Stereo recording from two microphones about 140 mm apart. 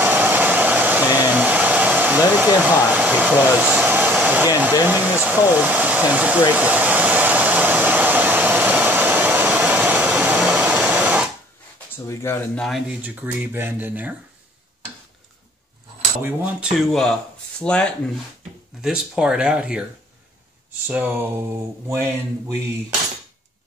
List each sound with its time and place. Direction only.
0.0 s hair dryer: 15° right (ahead or behind)
2.3 s speech: 15° right (ahead or behind)
4.6 s hair dryer: 15° right (ahead or behind)
12.1 s speech: 20° left (ahead or behind)
12.5 s speech: centre (ahead or behind)
13.0 s speech: 15° right (ahead or behind)
16.2 s speech: 10° right (ahead or behind); by 17.9 s 5° left (ahead or behind)
18.8 s speech: 5° right (ahead or behind)